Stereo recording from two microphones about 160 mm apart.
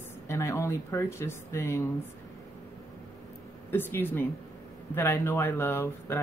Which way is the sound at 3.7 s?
15° left (ahead or behind).